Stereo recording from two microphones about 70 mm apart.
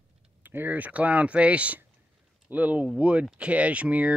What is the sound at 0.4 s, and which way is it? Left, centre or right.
Speech, right.